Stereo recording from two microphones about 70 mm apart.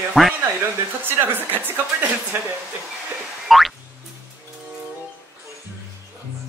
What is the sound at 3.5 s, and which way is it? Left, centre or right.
Music, centre.